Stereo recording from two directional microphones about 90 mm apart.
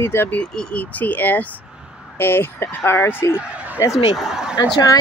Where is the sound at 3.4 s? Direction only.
15° right (ahead or behind).